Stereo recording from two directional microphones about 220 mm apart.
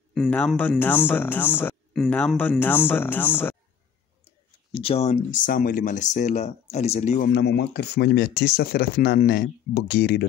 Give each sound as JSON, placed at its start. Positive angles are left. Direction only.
{"t": 0.1, "sound": "speech", "side_deg": 5}
{"t": 4.7, "sound": "speech", "side_deg": 25}
{"t": 7.3, "sound": "speech", "side_deg": 50}